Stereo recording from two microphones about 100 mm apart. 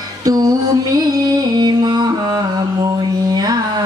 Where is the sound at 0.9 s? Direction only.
40° right (ahead or behind).